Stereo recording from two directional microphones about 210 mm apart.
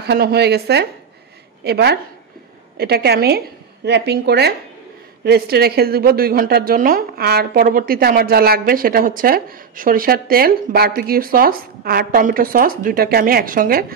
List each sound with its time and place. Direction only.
0.0 s a woman's voice: 50° right (ahead or behind)